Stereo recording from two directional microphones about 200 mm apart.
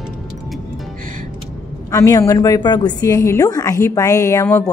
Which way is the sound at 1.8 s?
15° left (ahead or behind).